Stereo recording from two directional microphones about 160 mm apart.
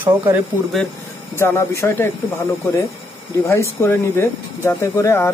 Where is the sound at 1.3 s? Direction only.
15° left (ahead or behind).